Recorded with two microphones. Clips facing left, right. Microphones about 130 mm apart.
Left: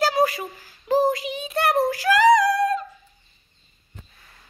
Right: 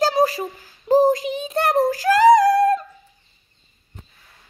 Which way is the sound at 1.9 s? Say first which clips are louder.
Right 4 dB; 45° right (ahead or behind).